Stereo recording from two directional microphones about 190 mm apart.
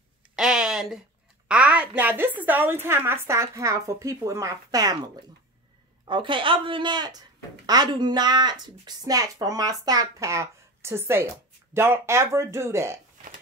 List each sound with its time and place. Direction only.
0.4 s speech: 5° right (ahead or behind); by 4.9 s 20° right (ahead or behind)
6.0 s a woman's voice: 25° right (ahead or behind)